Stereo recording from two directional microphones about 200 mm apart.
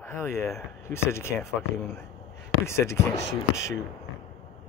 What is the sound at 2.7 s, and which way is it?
Speech, 15° left (ahead or behind).